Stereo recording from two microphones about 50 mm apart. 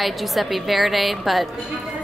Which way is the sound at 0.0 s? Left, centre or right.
Centre.